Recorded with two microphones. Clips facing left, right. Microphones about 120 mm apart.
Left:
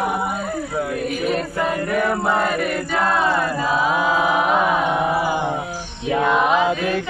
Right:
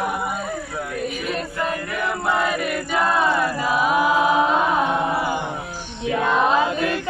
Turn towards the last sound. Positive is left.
turn(degrees=15)  # may be behind; listen again after turning